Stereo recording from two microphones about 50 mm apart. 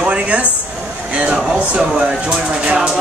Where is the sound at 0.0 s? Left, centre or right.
Right.